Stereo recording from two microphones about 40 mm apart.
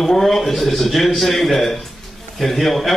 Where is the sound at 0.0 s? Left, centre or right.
Centre.